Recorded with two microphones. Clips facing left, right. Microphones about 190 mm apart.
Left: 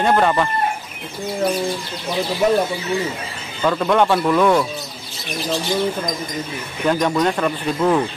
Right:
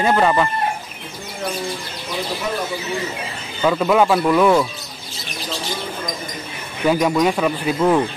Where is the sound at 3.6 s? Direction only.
5° right (ahead or behind).